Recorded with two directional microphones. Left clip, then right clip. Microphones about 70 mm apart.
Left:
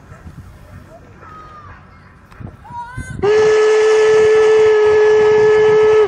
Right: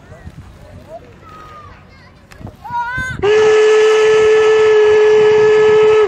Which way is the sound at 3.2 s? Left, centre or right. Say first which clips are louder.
Right 1 dB; centre.